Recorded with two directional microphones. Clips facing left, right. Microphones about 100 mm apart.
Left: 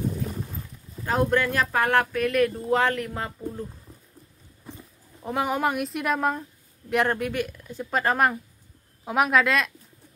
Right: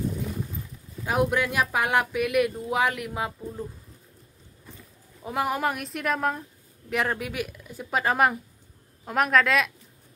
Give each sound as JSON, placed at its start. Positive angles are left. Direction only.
{"t": 1.0, "sound": "speech", "side_deg": -10}
{"t": 5.2, "sound": "a woman's voice", "side_deg": 0}